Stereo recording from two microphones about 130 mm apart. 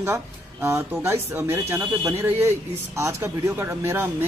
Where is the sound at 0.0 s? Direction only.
20° right (ahead or behind).